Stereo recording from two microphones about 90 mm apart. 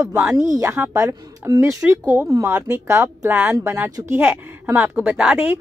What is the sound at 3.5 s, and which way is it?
Speech, 35° right (ahead or behind).